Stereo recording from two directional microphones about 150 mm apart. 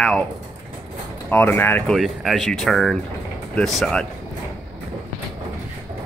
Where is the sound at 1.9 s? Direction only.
Centre (ahead or behind).